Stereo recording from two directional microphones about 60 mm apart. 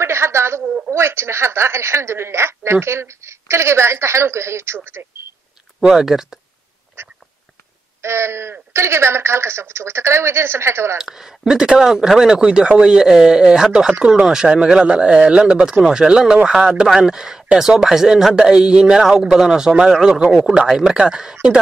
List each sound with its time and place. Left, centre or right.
0.0 s a woman's voice: right
5.8 s speech: centre
7.0 s a sound: right
8.0 s a woman's voice: right
11.0 s speech: centre